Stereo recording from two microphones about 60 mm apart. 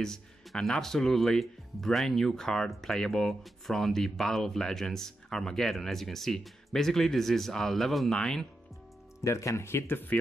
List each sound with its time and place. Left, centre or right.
0.0 s speech: centre
9.2 s speech: left